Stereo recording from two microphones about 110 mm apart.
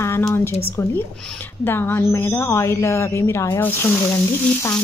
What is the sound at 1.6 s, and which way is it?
Speech, 20° left (ahead or behind).